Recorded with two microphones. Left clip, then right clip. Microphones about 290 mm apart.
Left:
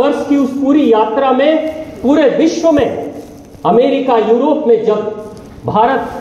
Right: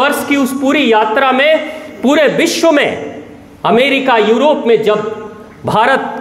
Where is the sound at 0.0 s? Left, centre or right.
Right.